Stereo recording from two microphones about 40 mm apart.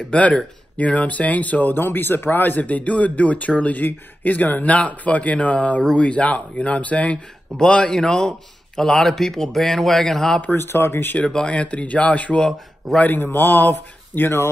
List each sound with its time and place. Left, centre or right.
0.1 s speech: left
1.8 s a man's voice: left
2.6 s speech: left
7.5 s speech: left
7.9 s speech: centre
10.5 s speech: left
11.2 s speech: left
13.0 s a man's voice: left